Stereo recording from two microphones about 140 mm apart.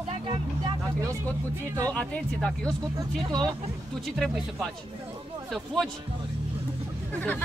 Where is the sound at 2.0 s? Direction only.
10° left (ahead or behind).